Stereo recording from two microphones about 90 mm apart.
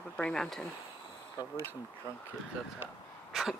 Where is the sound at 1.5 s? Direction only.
25° right (ahead or behind).